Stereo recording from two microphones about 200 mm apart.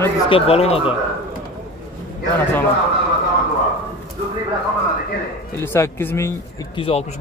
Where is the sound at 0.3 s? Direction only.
30° left (ahead or behind).